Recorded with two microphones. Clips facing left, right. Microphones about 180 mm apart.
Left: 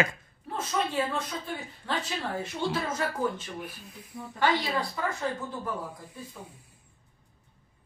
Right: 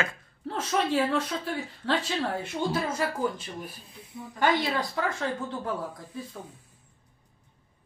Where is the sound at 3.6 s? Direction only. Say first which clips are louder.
Even; 35° right (ahead or behind).